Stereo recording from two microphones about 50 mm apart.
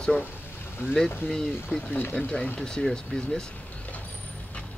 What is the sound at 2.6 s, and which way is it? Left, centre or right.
Speech, centre.